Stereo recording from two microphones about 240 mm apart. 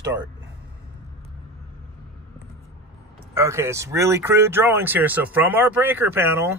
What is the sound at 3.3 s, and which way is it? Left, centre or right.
Speech, centre.